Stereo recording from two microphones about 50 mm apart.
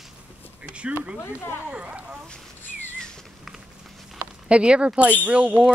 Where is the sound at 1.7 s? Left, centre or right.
Right.